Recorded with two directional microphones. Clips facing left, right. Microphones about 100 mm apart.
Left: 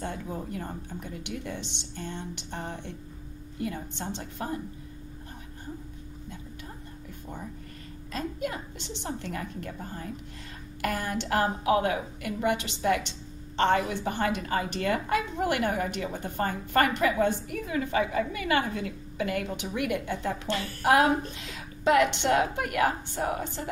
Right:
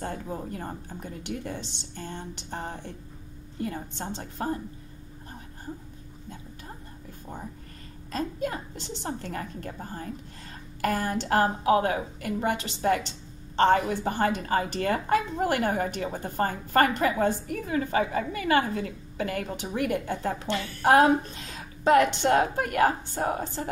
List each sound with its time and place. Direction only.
0.0 s a woman's voice: 35° right (ahead or behind)
8.1 s a woman's voice: 35° right (ahead or behind)